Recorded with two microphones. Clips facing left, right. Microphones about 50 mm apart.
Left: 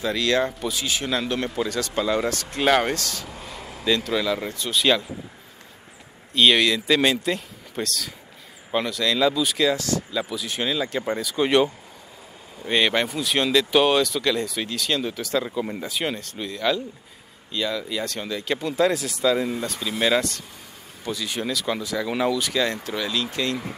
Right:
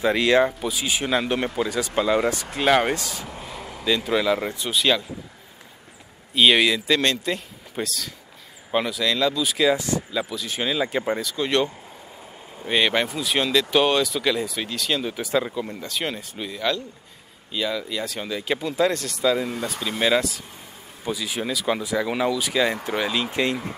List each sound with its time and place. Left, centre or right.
0.0 s speech: right
2.5 s speech: centre
2.9 s speech: centre
3.3 s a sound: centre
4.0 s speech: centre
4.7 s speech: centre
6.3 s speech: centre
9.7 s speech: centre
10.1 s speech: centre
11.3 s speech: centre
12.6 s speech: centre
15.1 s speech: centre
15.5 s speech: centre; by 23.7 s right